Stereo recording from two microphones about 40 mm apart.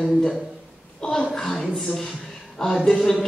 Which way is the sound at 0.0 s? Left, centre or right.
Centre.